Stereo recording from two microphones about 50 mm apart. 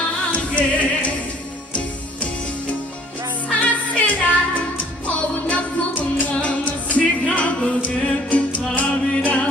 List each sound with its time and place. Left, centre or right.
0.3 s music: left
3.4 s music: left